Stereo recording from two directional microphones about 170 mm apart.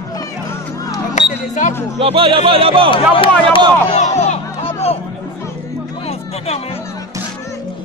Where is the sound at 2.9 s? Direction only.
30° left (ahead or behind).